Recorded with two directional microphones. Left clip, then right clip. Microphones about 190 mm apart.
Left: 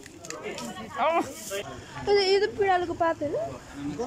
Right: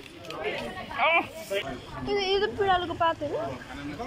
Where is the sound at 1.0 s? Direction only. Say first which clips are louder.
Right 1 dB; 25° left (ahead or behind).